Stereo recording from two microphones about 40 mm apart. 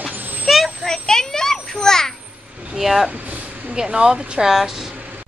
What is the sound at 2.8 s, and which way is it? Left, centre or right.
Speech, centre.